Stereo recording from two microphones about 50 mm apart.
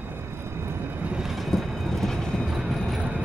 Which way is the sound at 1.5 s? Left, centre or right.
Centre.